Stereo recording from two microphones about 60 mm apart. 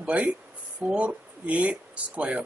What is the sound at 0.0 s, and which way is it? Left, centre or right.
Speech, right.